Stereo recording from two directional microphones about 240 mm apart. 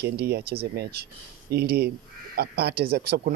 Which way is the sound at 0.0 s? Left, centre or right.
Right.